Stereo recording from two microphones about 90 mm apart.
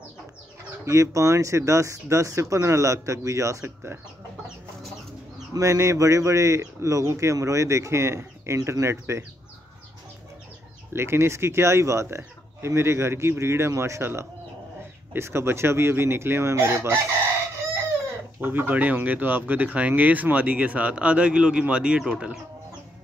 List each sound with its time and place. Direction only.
0.8 s speech: 35° right (ahead or behind)
5.5 s speech: 35° right (ahead or behind)
10.9 s speech: 30° right (ahead or behind)
15.1 s chicken: 30° right (ahead or behind)
18.4 s speech: 20° right (ahead or behind)